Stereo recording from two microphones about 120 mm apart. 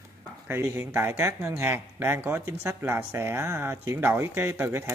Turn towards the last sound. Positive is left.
turn(degrees=-20)  # may be behind; listen again after turning